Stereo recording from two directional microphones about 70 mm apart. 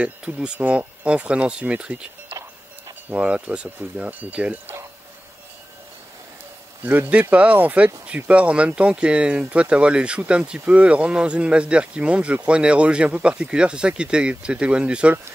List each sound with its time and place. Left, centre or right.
0.0 s speech: centre
3.1 s speech: centre
6.9 s speech: right